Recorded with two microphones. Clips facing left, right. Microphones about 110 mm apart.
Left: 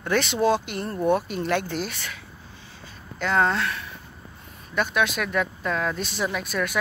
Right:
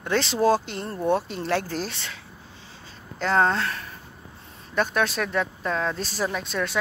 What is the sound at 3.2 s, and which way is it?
Speech, 35° right (ahead or behind).